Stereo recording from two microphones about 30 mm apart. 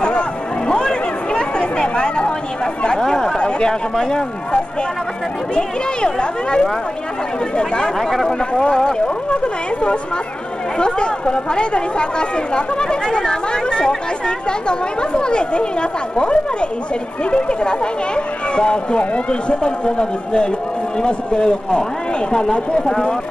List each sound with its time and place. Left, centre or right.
0.7 s chatter: left
2.9 s speech: centre
3.3 s speech: left
8.0 s speech: centre
9.0 s speech: left